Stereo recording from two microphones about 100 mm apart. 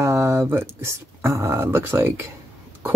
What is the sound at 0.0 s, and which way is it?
Speech, 30° right (ahead or behind).